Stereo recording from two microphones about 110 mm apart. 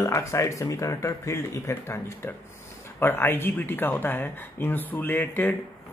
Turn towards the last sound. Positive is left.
turn(degrees=15)  # may be behind; listen again after turning